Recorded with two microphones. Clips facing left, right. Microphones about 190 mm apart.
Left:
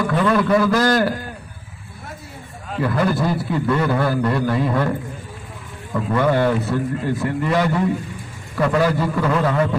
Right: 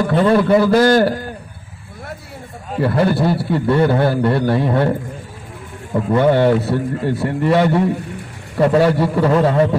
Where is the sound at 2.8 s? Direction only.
30° right (ahead or behind).